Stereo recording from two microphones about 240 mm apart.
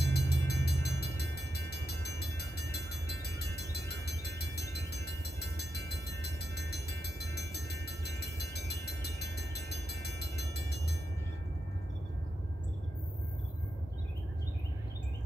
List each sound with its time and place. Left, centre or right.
0.0 s train: left